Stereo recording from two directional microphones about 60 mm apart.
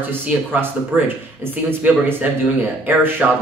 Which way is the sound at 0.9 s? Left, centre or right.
Centre.